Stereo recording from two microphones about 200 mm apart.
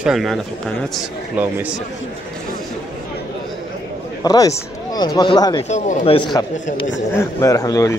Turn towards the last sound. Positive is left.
turn(degrees=15)  # may be behind; listen again after turning